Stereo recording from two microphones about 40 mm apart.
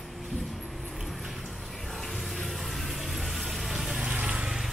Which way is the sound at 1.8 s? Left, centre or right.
Centre.